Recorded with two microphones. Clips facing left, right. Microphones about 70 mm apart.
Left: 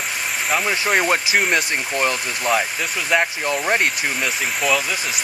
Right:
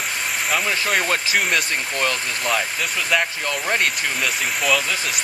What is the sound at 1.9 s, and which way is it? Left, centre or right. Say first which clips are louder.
Speech: left 3 dB; centre.